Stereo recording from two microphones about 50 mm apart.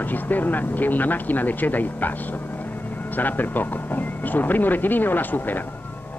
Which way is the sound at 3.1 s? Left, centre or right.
Left.